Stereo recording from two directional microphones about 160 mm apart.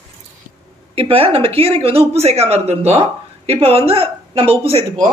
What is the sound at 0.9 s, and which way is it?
A woman's voice, 35° right (ahead or behind).